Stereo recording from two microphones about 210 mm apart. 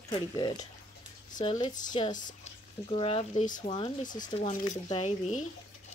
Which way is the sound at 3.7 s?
25° left (ahead or behind).